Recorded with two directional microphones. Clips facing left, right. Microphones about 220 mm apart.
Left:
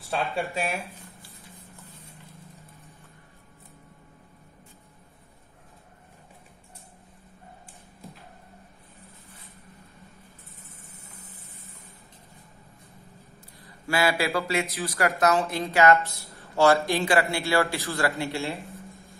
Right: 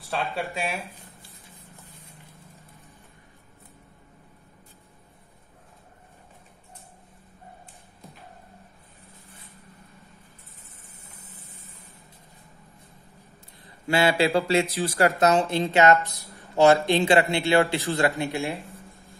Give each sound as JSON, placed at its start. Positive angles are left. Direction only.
{"t": 0.0, "sound": "speech", "side_deg": 0}
{"t": 13.6, "sound": "a man's voice", "side_deg": -25}
{"t": 16.0, "sound": "a man's voice", "side_deg": -15}